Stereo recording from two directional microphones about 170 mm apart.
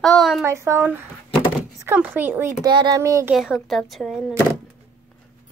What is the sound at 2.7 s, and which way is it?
Speech, 25° right (ahead or behind).